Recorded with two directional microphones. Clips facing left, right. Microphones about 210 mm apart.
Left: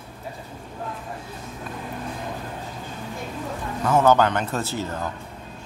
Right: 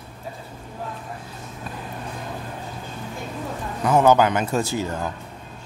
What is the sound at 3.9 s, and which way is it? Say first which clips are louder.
Speech: right 2 dB; 10° right (ahead or behind).